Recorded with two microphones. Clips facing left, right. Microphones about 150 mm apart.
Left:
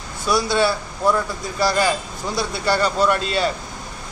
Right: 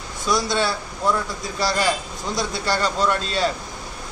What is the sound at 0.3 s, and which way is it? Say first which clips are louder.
Speech: left 3 dB; 5° left (ahead or behind).